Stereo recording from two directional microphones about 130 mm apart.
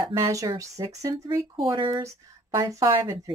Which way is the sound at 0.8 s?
35° right (ahead or behind).